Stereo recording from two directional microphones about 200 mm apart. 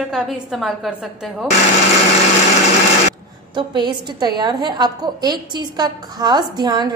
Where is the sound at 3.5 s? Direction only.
25° right (ahead or behind).